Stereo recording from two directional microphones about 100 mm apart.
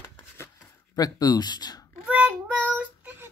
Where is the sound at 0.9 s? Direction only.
40° left (ahead or behind).